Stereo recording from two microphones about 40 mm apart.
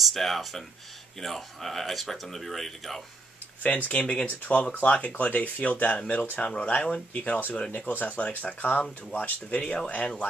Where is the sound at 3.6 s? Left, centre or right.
Left.